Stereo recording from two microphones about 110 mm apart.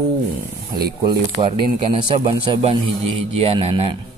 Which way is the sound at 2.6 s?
60° right (ahead or behind).